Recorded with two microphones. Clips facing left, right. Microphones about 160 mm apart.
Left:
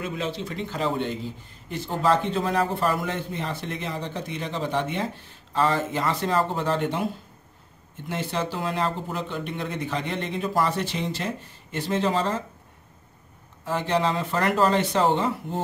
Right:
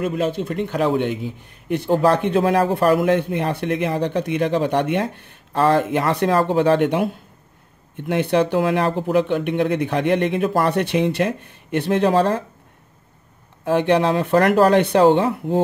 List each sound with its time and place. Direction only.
0.0 s a man's voice: 55° right (ahead or behind)
8.1 s a man's voice: 65° right (ahead or behind)
13.7 s a man's voice: 65° right (ahead or behind)